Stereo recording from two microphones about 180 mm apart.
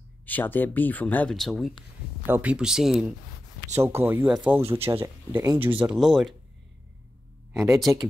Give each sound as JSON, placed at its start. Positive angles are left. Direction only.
{"t": 0.2, "sound": "speech", "side_deg": 10}
{"t": 2.2, "sound": "speech", "side_deg": -10}
{"t": 3.7, "sound": "speech", "side_deg": -15}
{"t": 5.8, "sound": "speech", "side_deg": -5}
{"t": 7.5, "sound": "speech", "side_deg": -15}